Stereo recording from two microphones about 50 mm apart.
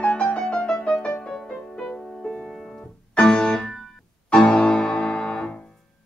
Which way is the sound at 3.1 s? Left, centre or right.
Centre.